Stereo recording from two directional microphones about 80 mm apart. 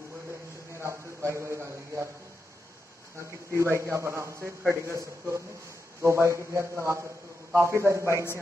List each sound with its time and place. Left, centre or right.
0.7 s a man's voice: right
3.5 s a man's voice: right
6.0 s a man's voice: right